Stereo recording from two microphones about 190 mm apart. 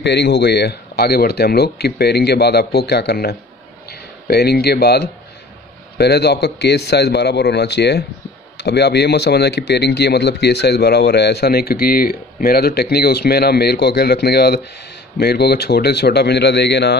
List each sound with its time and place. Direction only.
0.0 s speech: 60° left (ahead or behind)